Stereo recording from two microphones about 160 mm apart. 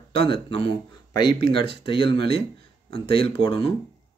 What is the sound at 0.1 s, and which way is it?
Speech, 35° left (ahead or behind).